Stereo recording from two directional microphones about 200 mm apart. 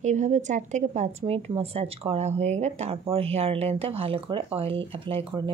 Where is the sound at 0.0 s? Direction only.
35° right (ahead or behind).